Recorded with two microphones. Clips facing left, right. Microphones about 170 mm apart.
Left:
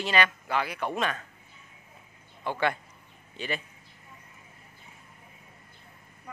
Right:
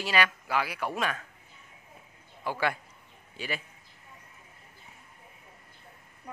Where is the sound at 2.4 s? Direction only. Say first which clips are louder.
Left 2 dB; 5° right (ahead or behind).